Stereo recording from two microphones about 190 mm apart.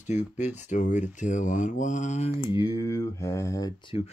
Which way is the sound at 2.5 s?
20° left (ahead or behind).